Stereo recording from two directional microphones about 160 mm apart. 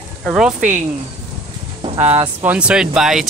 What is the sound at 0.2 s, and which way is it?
Speech, 5° right (ahead or behind).